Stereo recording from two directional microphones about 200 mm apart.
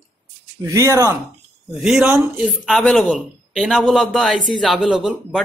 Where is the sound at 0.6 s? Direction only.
15° right (ahead or behind).